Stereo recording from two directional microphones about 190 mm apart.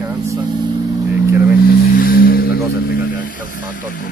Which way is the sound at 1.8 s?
50° left (ahead or behind).